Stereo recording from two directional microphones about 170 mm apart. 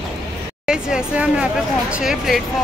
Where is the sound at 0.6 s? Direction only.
5° right (ahead or behind).